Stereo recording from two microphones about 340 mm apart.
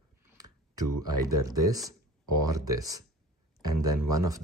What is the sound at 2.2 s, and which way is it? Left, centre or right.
Speech, right.